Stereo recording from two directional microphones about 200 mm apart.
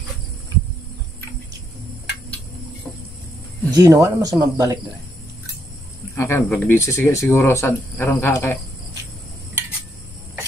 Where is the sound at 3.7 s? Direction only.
15° right (ahead or behind).